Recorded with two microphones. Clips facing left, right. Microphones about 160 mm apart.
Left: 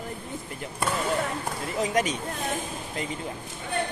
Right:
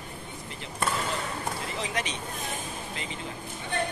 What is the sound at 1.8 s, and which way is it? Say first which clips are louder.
Speech: left 10 dB; 45° left (ahead or behind).